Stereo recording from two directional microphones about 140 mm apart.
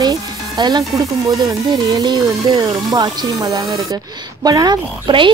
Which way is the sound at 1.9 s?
30° right (ahead or behind).